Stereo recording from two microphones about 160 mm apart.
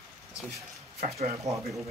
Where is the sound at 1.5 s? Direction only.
45° right (ahead or behind).